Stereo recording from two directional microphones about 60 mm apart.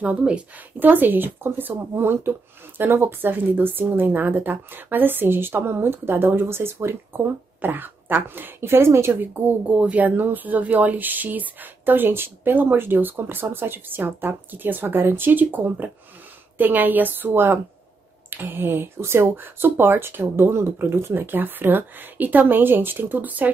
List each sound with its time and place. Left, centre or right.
0.7 s speech: right
9.2 s speech: right